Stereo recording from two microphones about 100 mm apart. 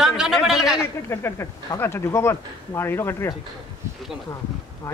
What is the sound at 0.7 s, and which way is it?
Speech, 25° left (ahead or behind).